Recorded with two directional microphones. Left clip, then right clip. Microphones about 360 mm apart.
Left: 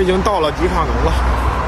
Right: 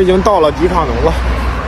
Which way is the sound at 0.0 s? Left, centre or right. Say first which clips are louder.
Right 5 dB; centre.